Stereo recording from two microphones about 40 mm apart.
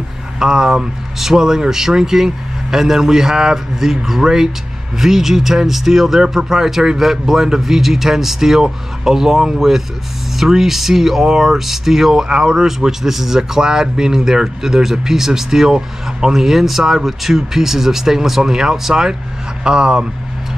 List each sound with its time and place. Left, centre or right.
0.4 s speech: centre